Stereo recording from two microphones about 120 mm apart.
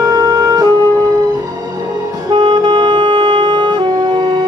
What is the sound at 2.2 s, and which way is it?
Music, 40° right (ahead or behind).